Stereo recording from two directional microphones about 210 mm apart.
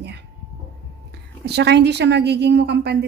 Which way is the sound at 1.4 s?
55° right (ahead or behind).